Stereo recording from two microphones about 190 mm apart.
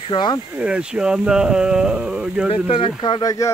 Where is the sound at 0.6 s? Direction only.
5° right (ahead or behind).